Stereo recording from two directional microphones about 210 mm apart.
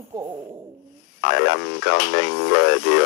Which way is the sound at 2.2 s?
50° left (ahead or behind).